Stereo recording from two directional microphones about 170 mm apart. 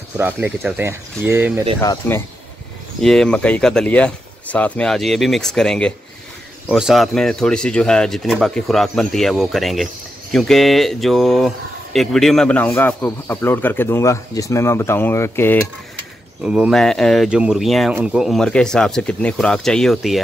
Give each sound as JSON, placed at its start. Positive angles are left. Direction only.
{"t": 0.2, "sound": "speech", "side_deg": -10}
{"t": 1.8, "sound": "speech", "side_deg": 15}
{"t": 3.0, "sound": "speech", "side_deg": 5}
{"t": 16.4, "sound": "speech", "side_deg": -5}